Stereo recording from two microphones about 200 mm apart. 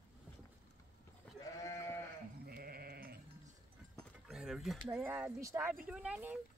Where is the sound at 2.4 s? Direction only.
50° right (ahead or behind).